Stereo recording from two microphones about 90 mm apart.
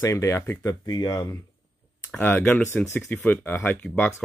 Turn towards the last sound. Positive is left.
turn(degrees=5)  # may be behind; listen again after turning